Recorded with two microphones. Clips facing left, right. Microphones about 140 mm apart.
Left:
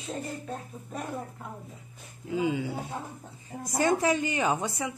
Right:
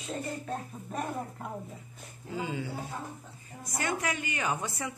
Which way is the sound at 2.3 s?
15° left (ahead or behind).